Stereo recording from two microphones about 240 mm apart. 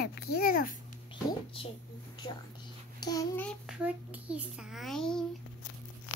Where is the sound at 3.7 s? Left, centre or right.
Centre.